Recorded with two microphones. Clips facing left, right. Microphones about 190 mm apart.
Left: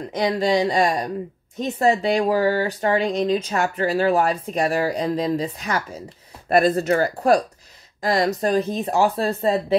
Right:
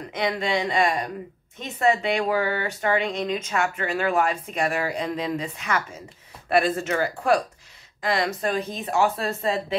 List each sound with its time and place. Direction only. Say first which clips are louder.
0.1 s speech: left 5 dB; 35° left (ahead or behind)